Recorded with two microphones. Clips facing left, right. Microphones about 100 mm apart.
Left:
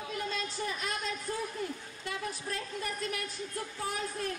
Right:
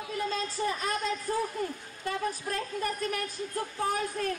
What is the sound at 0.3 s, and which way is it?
Speech, 40° right (ahead or behind).